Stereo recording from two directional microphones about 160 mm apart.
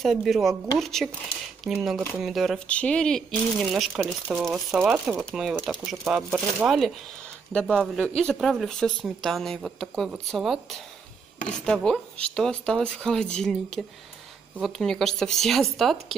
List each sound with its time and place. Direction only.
0.0 s speech: centre (ahead or behind)
4.6 s speech: 10° right (ahead or behind)
11.3 s chopping: 50° left (ahead or behind)
11.6 s speech: 5° left (ahead or behind)